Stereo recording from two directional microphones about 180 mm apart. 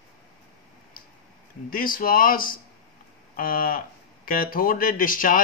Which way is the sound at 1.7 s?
50° left (ahead or behind).